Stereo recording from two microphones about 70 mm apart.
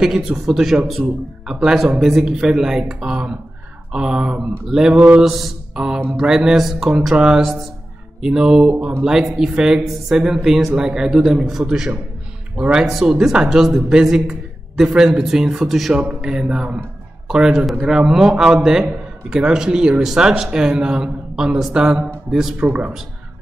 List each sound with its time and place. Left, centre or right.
0.0 s a man's voice: centre